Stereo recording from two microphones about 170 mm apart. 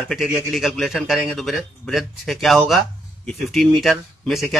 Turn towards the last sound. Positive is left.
turn(degrees=0)  # may be behind; listen again after turning